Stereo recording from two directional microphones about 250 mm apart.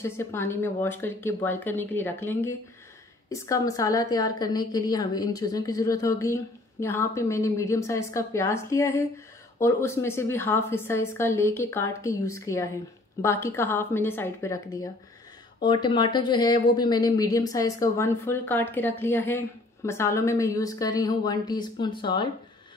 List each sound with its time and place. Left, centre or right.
0.0 s a woman's voice: centre